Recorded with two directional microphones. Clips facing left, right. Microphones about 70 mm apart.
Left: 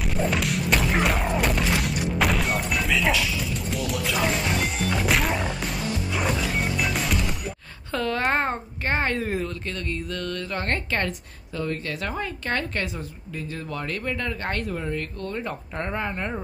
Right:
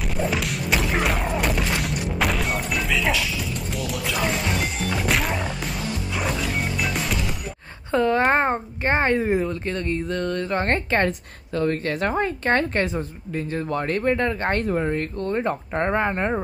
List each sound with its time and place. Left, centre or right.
0.2 s music: centre
7.9 s speech: right
11.1 s a woman's voice: right